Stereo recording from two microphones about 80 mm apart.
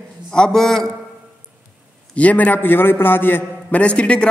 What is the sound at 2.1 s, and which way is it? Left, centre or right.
A man's voice, centre.